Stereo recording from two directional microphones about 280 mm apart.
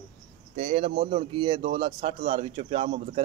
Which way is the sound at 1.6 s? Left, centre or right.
Right.